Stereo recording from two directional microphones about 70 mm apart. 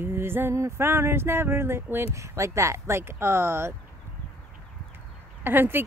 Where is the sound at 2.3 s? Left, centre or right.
Right.